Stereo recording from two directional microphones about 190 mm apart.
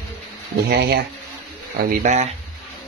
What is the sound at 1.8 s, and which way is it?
Speech, 45° right (ahead or behind).